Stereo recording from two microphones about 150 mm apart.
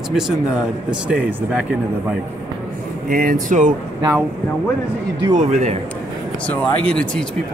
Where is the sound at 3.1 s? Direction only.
65° right (ahead or behind).